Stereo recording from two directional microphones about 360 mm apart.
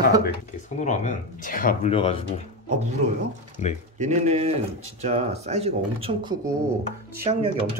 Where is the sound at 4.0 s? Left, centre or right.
Centre.